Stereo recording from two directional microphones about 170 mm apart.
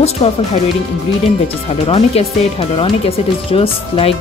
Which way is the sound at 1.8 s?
35° left (ahead or behind).